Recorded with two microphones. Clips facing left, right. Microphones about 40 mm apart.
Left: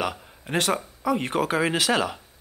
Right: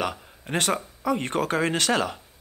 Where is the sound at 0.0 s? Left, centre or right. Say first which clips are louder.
Even; centre.